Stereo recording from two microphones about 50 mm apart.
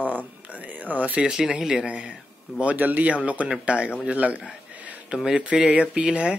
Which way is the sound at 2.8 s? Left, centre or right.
Right.